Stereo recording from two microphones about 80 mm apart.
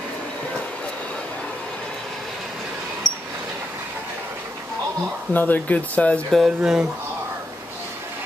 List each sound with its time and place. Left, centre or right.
5.3 s speech: left
6.3 s speech: centre